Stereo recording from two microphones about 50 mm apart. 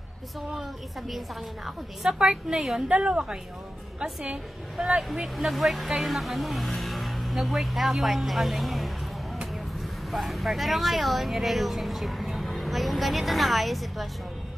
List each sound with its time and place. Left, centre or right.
0.6 s speech: centre
2.0 s a woman's voice: centre
10.1 s speech: centre